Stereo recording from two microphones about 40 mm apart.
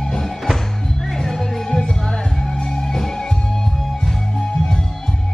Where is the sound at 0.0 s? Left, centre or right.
Centre.